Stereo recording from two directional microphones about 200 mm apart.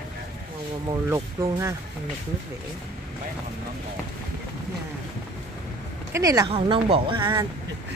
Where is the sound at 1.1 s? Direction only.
15° right (ahead or behind).